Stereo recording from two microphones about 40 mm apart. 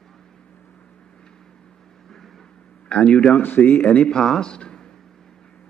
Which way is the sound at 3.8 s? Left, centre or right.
Left.